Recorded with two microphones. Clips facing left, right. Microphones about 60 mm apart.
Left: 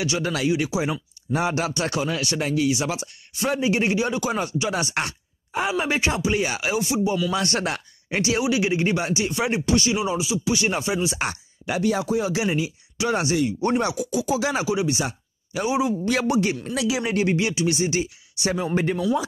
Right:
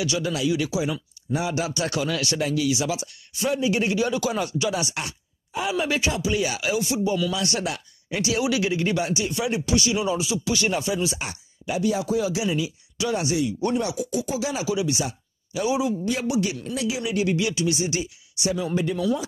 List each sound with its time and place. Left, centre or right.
0.0 s speech: left
1.3 s speech: left
5.7 s speech: left
7.3 s speech: left
9.9 s speech: centre
10.7 s speech: left
11.1 s speech: left
12.0 s speech: left
13.9 s speech: left
14.7 s speech: left
16.3 s speech: left
16.7 s speech: left
17.0 s speech: left